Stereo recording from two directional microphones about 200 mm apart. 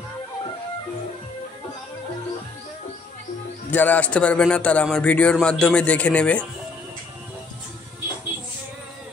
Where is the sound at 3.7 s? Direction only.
10° left (ahead or behind).